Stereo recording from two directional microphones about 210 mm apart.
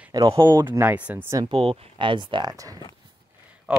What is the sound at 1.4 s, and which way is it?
Speech, 30° right (ahead or behind).